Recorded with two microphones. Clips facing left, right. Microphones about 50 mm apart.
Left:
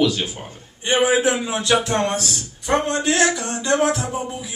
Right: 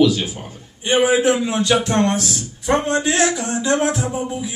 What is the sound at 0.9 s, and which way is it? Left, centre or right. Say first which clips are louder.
Speech: right 2 dB; left.